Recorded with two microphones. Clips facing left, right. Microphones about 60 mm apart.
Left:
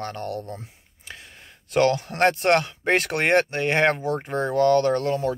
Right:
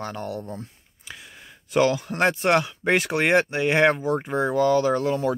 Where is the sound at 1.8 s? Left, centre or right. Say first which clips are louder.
Left 1 dB; centre.